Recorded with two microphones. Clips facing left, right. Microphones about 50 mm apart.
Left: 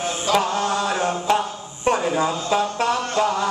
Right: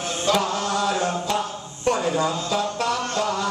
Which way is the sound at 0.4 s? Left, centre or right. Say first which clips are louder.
Left 2 dB; left.